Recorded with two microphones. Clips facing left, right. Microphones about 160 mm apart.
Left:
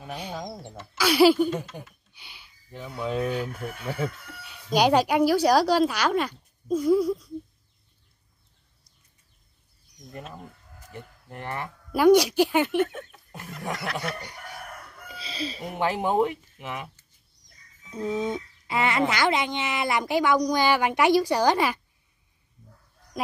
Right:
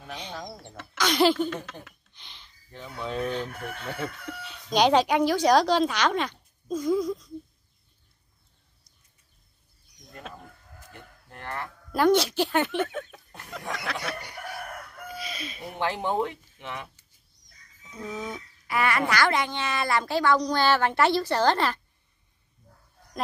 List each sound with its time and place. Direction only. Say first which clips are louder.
0.0 s speech: left 3 dB; 10° left (ahead or behind)
11.2 s speech: left 2 dB; 15° left (ahead or behind)
15.0 s chicken: left 4 dB; 30° left (ahead or behind)
15.8 s speech: left 4 dB; 10° left (ahead or behind)
17.9 s speech: left 7 dB; 25° left (ahead or behind)